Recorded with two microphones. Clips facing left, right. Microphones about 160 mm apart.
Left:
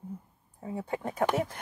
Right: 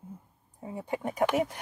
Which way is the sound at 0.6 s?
15° right (ahead or behind).